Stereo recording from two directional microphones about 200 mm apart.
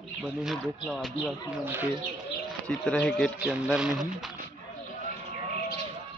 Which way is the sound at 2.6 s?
5° left (ahead or behind).